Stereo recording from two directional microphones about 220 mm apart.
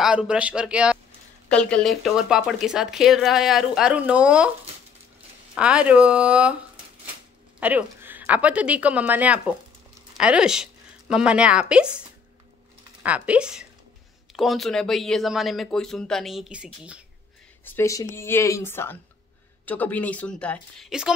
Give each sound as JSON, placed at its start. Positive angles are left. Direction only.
{"t": 0.0, "sound": "speech", "side_deg": -5}
{"t": 5.5, "sound": "speech", "side_deg": -5}
{"t": 7.6, "sound": "a woman's voice", "side_deg": -10}
{"t": 13.0, "sound": "speech", "side_deg": -5}
{"t": 17.6, "sound": "speech", "side_deg": 10}